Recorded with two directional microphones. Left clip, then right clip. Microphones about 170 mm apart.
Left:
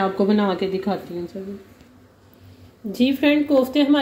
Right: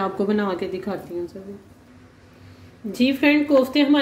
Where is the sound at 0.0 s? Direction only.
15° left (ahead or behind).